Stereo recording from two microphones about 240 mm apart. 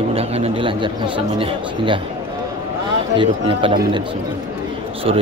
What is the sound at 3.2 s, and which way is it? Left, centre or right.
Speech, right.